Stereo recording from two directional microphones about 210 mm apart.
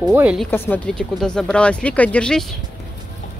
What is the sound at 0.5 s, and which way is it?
Speech, 10° left (ahead or behind).